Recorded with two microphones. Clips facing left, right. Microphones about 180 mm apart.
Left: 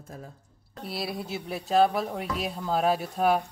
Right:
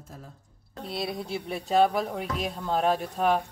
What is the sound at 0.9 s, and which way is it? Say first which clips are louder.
Speech: right 1 dB; 5° left (ahead or behind).